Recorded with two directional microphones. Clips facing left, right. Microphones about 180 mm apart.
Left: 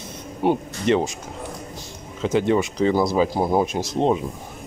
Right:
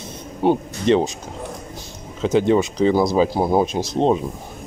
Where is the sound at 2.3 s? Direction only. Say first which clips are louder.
Right 3 dB; 25° right (ahead or behind).